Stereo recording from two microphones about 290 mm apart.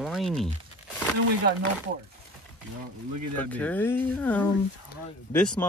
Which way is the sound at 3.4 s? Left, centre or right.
Centre.